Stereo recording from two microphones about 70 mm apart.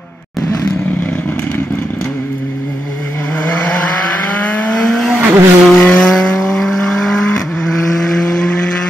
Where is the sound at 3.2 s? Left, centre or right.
Left.